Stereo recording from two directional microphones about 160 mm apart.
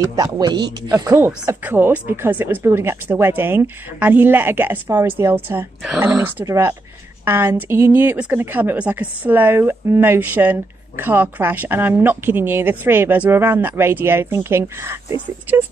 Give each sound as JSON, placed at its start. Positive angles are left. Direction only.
{"t": 0.1, "sound": "a man's voice", "side_deg": -25}